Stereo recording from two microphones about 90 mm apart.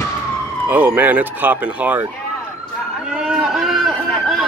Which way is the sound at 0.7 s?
20° right (ahead or behind).